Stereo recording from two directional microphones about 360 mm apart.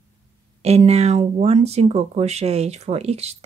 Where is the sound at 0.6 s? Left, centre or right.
Centre.